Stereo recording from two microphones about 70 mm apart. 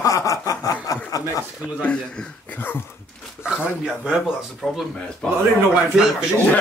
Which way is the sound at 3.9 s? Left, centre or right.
Centre.